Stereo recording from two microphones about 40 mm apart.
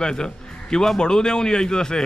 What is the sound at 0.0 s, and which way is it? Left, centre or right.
A man's voice, centre.